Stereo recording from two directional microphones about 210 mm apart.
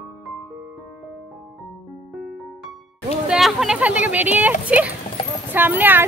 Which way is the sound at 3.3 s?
Centre (ahead or behind).